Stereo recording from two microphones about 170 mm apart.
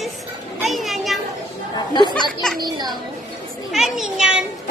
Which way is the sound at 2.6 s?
25° right (ahead or behind).